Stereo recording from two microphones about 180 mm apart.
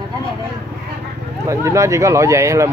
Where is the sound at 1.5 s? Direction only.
15° right (ahead or behind).